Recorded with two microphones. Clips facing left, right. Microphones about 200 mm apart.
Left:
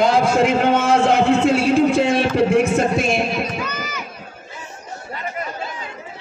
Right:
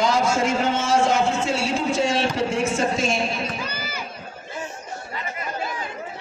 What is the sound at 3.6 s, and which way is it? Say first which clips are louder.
Run: left 4 dB; 30° right (ahead or behind).